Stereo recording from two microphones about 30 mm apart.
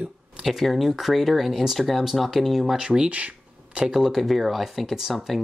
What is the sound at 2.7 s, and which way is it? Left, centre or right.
Speech, right.